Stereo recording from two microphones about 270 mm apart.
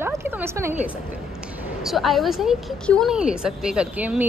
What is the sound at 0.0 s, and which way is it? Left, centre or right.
A woman's voice, centre.